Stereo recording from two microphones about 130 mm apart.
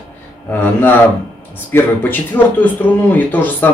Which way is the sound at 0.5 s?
15° left (ahead or behind).